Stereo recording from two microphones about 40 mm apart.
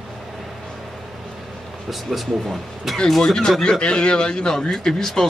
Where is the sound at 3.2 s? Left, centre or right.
Centre.